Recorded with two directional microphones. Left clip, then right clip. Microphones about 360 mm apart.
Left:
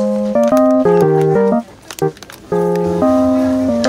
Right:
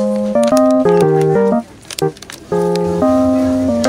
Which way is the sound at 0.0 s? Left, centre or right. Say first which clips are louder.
Even; centre.